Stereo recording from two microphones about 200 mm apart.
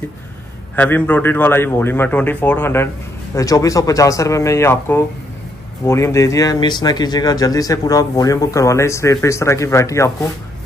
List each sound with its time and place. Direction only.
0.7 s speech: 10° left (ahead or behind)